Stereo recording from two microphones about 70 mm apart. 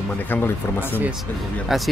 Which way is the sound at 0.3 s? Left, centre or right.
Left.